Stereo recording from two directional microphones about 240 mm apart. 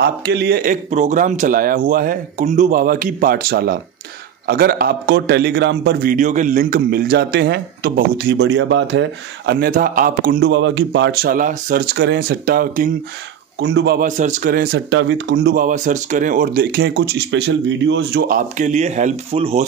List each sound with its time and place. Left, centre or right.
0.0 s a man's voice: right
9.5 s a man's voice: right
13.6 s a man's voice: right